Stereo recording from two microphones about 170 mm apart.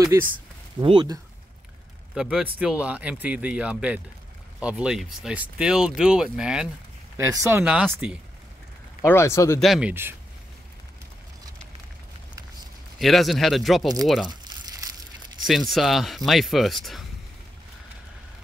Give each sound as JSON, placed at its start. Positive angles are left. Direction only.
{"t": 0.0, "sound": "speech", "side_deg": -15}
{"t": 0.7, "sound": "speech", "side_deg": -30}
{"t": 2.1, "sound": "speech", "side_deg": -5}
{"t": 7.2, "sound": "speech", "side_deg": -15}
{"t": 7.6, "sound": "speech", "side_deg": -5}
{"t": 9.0, "sound": "speech", "side_deg": 15}
{"t": 9.6, "sound": "speech", "side_deg": -5}
{"t": 13.0, "sound": "speech", "side_deg": 0}
{"t": 14.3, "sound": "crumpling", "side_deg": -25}
{"t": 15.4, "sound": "speech", "side_deg": 0}